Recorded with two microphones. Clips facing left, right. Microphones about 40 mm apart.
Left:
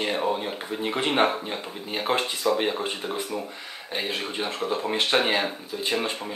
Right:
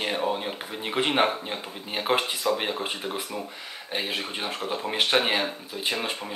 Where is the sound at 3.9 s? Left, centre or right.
Centre.